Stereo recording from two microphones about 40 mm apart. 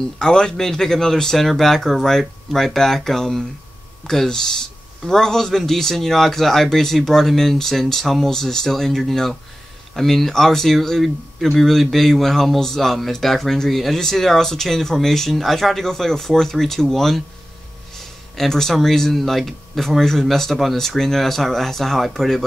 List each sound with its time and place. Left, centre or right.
0.2 s a man's voice: centre